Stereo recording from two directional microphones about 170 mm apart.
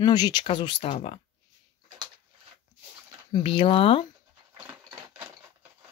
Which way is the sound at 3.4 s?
35° left (ahead or behind).